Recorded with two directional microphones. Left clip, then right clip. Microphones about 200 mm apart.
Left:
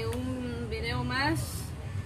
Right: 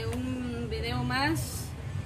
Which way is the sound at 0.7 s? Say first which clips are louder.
Right 1 dB; 15° right (ahead or behind).